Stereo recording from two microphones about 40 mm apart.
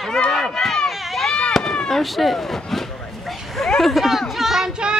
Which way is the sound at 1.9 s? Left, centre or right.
Centre.